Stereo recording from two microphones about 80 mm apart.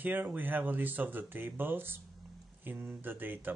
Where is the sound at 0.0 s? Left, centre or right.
Right.